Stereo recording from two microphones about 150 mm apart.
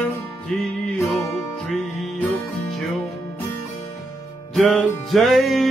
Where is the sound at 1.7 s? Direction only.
5° left (ahead or behind).